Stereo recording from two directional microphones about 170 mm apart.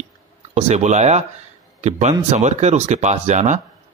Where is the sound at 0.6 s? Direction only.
40° right (ahead or behind).